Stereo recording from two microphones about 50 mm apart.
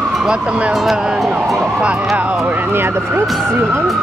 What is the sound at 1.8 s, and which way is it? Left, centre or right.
Speech, right.